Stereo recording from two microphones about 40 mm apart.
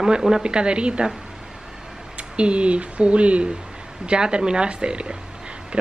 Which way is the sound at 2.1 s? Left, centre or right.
Right.